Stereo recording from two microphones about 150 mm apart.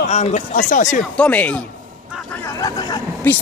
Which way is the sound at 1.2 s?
10° left (ahead or behind).